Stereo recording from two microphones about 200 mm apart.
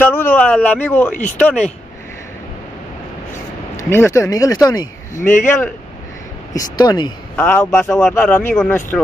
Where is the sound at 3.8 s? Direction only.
15° left (ahead or behind).